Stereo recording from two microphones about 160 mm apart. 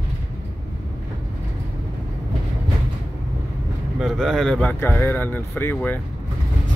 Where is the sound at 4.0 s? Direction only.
Centre (ahead or behind).